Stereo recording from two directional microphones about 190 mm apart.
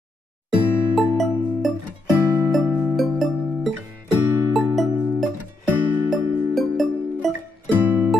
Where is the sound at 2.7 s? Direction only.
10° right (ahead or behind).